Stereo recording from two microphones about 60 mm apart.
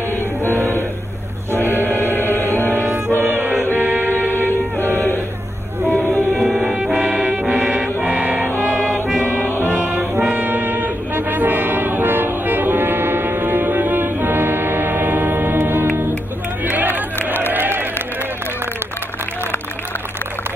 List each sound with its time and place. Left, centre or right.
0.4 s music: right
1.5 s music: left
2.7 s music: right
4.7 s music: left
6.3 s music: centre; by 8.5 s right
9.6 s music: right
16.6 s crowd: right
17.5 s a sound: right